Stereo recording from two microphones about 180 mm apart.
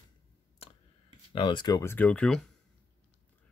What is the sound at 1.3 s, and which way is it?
Speech, 25° left (ahead or behind).